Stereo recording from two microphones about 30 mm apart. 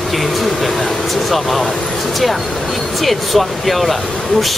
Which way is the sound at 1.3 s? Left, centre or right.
Centre.